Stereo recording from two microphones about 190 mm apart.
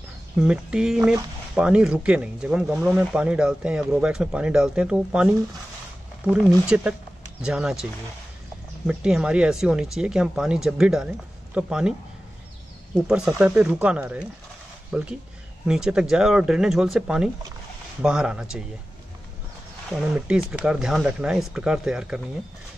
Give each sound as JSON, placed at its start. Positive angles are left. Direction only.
{"t": 0.4, "sound": "speech", "side_deg": -5}
{"t": 6.7, "sound": "speech", "side_deg": -5}
{"t": 13.0, "sound": "speech", "side_deg": -5}
{"t": 20.0, "sound": "speech", "side_deg": -5}